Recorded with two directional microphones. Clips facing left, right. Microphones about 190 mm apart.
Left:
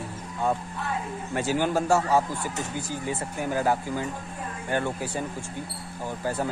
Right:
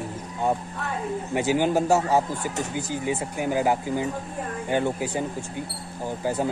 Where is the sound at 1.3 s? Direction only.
15° right (ahead or behind).